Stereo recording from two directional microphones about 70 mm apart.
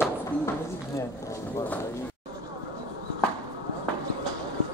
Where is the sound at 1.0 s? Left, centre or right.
Left.